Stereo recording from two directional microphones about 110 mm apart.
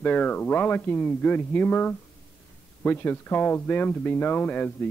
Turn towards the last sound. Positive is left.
turn(degrees=15)  # may be behind; listen again after turning